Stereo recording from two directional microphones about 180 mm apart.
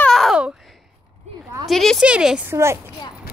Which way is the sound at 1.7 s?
Centre (ahead or behind).